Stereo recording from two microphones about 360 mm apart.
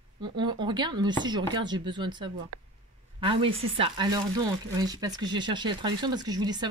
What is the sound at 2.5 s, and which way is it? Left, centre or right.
Speech, right.